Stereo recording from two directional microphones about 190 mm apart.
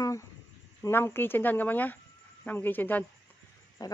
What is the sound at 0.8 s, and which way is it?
Speech, 10° left (ahead or behind).